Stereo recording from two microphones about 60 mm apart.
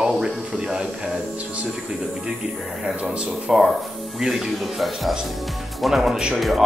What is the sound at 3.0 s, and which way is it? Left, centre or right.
Speech, centre.